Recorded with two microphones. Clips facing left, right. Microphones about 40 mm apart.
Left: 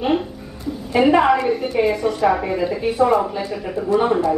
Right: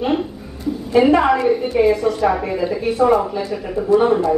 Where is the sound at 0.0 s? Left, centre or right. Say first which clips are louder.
Even; centre.